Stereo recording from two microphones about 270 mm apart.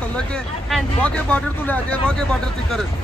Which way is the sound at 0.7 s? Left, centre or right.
Centre.